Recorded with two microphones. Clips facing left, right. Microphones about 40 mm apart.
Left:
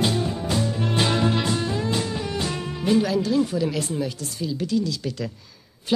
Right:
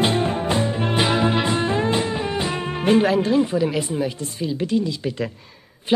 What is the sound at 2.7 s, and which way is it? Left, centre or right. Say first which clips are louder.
Speech: right 4 dB; right.